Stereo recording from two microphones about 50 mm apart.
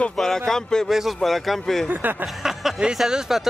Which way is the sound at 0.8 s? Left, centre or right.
Centre.